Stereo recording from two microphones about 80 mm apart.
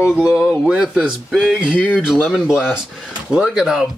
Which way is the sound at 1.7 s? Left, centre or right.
Centre.